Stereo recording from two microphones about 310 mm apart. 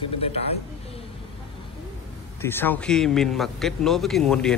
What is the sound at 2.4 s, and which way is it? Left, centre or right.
Speech, centre.